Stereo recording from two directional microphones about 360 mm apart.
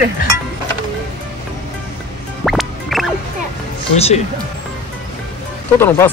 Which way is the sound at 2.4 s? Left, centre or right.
Centre.